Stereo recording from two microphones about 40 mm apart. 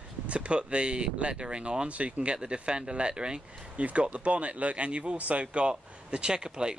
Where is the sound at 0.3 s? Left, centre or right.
Right.